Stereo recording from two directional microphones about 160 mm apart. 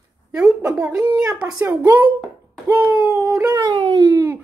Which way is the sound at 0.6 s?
20° right (ahead or behind).